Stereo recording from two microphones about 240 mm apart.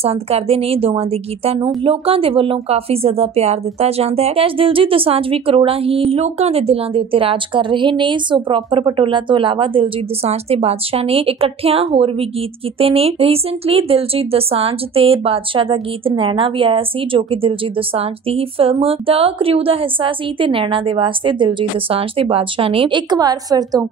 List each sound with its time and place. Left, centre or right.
0.0 s speech: right